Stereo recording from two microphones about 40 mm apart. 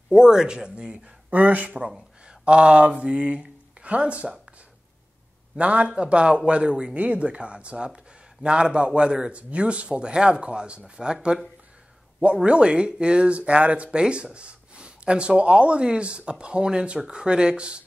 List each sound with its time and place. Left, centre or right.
0.1 s speech: centre
1.3 s speech: right
1.8 s speech: centre
2.2 s speech: right
5.6 s speech: right
11.0 s speech: centre
12.4 s speech: right